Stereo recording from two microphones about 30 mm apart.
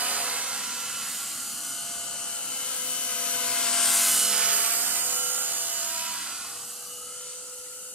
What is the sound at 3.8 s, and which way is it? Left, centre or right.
Rub, centre.